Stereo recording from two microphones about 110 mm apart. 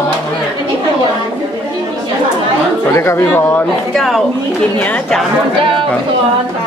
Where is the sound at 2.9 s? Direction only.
25° left (ahead or behind).